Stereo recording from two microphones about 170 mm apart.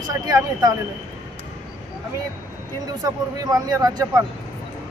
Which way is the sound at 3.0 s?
20° right (ahead or behind).